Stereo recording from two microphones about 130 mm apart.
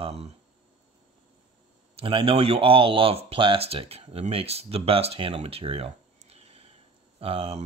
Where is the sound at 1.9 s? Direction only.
45° right (ahead or behind).